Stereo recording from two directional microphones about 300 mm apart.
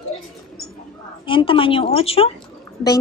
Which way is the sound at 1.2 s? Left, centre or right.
Centre.